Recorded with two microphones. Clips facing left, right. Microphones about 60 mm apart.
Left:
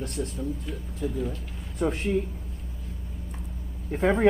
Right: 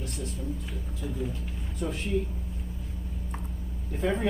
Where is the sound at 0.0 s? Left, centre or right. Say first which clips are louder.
Left 5 dB; left.